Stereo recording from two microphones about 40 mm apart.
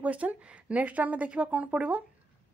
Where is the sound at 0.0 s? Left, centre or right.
Right.